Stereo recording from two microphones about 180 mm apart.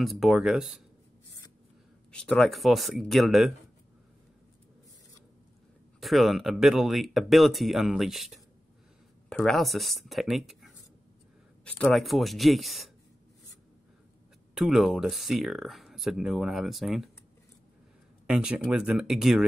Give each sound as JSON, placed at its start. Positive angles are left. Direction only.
{"t": 0.0, "sound": "speech", "side_deg": 0}
{"t": 2.1, "sound": "speech", "side_deg": 5}
{"t": 5.9, "sound": "speech", "side_deg": 0}
{"t": 14.5, "sound": "speech", "side_deg": 0}
{"t": 18.2, "sound": "speech", "side_deg": -5}